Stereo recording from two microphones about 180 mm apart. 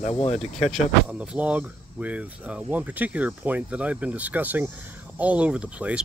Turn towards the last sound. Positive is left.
turn(degrees=-5)  # may be behind; listen again after turning